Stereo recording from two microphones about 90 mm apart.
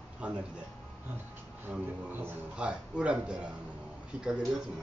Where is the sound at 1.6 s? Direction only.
20° right (ahead or behind).